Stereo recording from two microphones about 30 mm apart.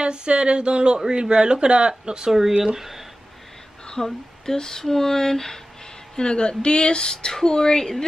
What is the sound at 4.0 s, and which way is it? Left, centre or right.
Speech, left.